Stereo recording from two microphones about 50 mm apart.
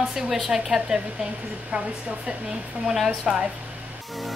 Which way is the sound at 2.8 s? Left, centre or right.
Centre.